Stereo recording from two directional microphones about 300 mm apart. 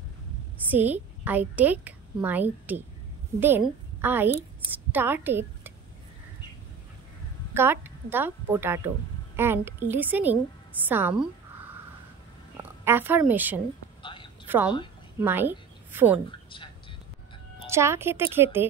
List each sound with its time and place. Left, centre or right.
0.7 s a woman's voice: centre
7.5 s a woman's voice: centre
12.5 s a woman's voice: centre
14.0 s a sound: centre
14.5 s a woman's voice: centre
16.3 s a woman's voice: centre
17.6 s a woman's voice: centre